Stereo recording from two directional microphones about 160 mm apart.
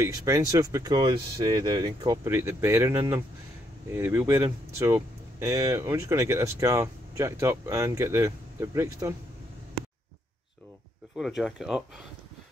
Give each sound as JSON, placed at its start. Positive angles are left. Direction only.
{"t": 0.0, "sound": "speech", "side_deg": -20}
{"t": 11.1, "sound": "speech", "side_deg": 0}